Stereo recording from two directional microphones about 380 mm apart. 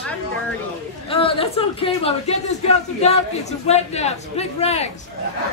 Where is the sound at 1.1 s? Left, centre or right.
Centre.